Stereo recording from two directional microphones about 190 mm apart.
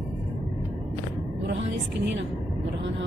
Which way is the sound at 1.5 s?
70° right (ahead or behind).